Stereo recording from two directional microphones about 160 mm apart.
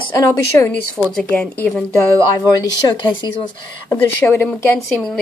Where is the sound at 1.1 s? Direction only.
5° left (ahead or behind).